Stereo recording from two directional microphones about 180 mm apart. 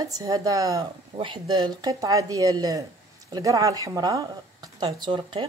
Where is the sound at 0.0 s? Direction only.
20° right (ahead or behind).